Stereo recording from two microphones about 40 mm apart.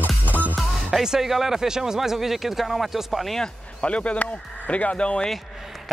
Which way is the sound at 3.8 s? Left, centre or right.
Left.